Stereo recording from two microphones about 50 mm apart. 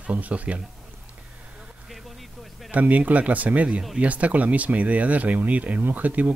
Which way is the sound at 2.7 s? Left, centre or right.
Right.